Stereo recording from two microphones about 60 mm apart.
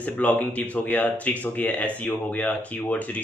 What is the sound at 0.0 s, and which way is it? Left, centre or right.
Speech, left.